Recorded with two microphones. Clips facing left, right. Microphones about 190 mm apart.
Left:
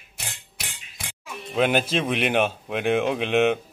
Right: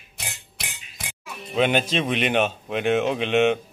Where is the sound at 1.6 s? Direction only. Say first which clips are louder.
Even; 5° left (ahead or behind).